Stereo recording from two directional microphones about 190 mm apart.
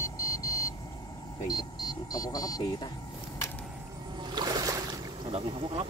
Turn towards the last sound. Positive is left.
turn(degrees=-30)  # may be behind; listen again after turning